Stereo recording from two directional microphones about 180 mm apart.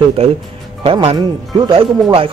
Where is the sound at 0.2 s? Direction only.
35° right (ahead or behind).